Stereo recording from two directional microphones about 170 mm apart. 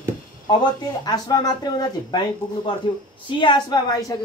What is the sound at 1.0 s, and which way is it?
Speech, 25° left (ahead or behind).